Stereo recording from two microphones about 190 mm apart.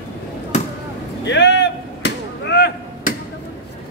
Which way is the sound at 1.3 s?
65° left (ahead or behind).